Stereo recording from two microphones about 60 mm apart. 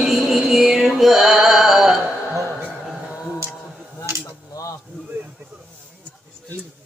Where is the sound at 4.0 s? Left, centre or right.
Left.